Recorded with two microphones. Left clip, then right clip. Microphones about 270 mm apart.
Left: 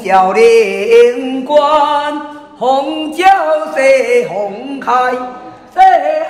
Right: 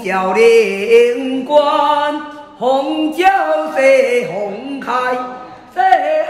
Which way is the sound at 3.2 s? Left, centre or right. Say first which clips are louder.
Left 4 dB; left.